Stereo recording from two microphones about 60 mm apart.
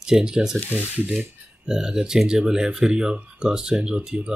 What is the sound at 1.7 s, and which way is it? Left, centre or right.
Speech, centre.